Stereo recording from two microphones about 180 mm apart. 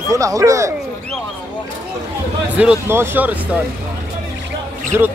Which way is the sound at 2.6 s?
10° right (ahead or behind).